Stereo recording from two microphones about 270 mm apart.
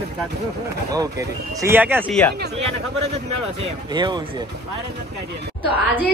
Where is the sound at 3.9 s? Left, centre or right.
Centre.